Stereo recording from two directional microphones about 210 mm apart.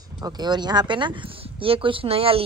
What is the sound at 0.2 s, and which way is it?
A woman's voice, 20° right (ahead or behind).